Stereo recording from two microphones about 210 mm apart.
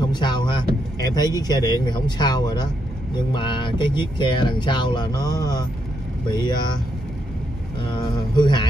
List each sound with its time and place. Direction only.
0.1 s vehicle: 20° left (ahead or behind)
1.1 s speech: 20° left (ahead or behind)
7.8 s speech: 20° left (ahead or behind)